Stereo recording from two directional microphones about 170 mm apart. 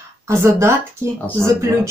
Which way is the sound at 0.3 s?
15° right (ahead or behind).